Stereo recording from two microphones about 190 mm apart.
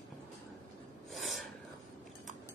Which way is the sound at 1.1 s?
Centre (ahead or behind).